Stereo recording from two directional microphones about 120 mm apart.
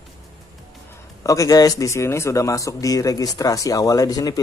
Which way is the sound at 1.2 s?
25° left (ahead or behind).